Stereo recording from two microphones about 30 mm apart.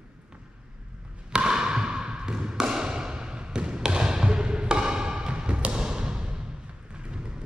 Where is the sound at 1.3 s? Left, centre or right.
Right.